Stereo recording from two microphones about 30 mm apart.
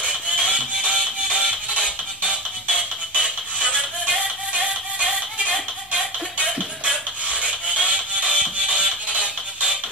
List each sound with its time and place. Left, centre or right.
0.0 s music: right
6.3 s music: right